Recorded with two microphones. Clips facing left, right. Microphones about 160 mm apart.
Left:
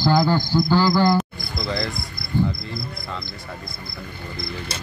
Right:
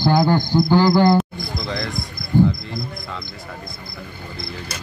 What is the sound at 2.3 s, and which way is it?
Cricket, 45° right (ahead or behind).